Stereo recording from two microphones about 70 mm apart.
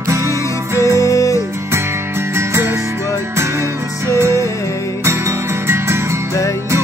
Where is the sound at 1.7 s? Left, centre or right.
Right.